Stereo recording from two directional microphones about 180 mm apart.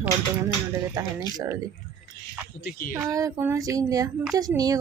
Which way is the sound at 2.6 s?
55° left (ahead or behind).